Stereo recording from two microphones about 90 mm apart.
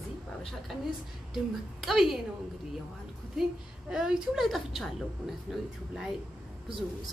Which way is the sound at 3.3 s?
5° right (ahead or behind).